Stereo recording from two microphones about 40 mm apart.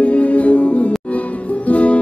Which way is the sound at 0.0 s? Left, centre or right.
Left.